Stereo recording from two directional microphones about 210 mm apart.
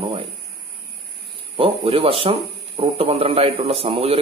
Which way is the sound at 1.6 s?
25° right (ahead or behind).